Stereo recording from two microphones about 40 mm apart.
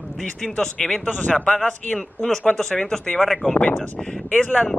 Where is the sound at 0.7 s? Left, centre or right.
Left.